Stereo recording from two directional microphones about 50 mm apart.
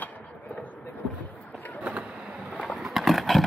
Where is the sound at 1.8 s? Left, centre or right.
Right.